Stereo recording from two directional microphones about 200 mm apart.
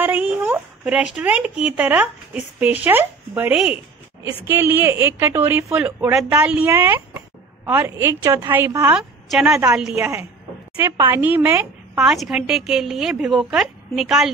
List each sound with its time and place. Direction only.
0.0 s a woman's voice: 10° right (ahead or behind)